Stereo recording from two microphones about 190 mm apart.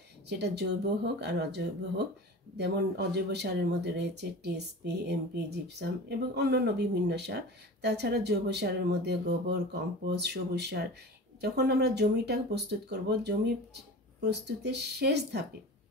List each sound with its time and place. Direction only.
0.3 s speech: 60° right (ahead or behind)